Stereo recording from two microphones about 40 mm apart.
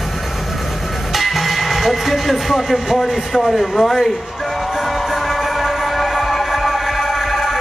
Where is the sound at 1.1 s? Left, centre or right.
Centre.